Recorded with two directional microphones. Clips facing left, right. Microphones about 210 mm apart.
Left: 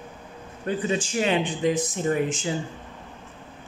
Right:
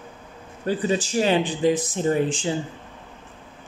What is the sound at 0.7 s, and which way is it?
Speech, 35° right (ahead or behind).